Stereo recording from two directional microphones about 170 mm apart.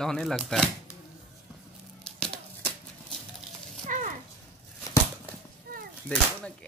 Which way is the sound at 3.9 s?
50° right (ahead or behind).